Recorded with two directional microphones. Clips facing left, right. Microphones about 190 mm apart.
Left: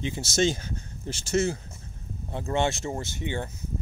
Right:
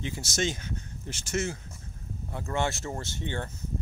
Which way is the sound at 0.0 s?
25° left (ahead or behind).